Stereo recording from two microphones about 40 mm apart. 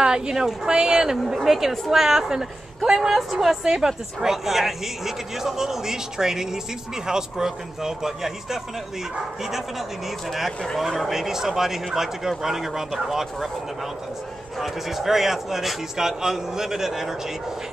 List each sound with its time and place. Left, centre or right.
0.0 s a woman's voice: centre
1.1 s a woman's voice: centre
3.6 s a woman's voice: centre
14.6 s a woman's voice: centre